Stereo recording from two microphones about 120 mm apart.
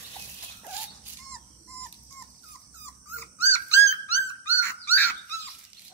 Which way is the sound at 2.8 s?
20° left (ahead or behind).